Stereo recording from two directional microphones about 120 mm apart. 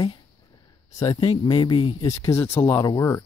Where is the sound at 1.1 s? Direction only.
45° left (ahead or behind).